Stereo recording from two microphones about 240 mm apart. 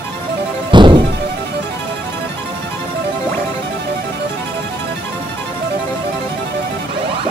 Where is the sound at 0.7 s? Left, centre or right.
Centre.